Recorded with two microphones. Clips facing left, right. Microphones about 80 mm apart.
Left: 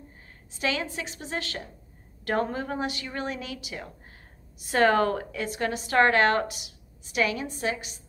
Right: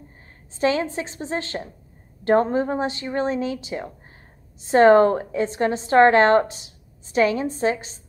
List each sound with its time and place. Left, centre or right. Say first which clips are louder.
0.6 s a woman's voice: right 8 dB; right